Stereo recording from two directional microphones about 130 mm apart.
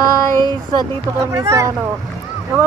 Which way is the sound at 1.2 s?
25° right (ahead or behind).